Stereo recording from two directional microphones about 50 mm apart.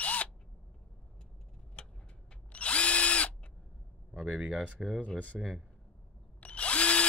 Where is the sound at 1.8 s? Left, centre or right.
Left.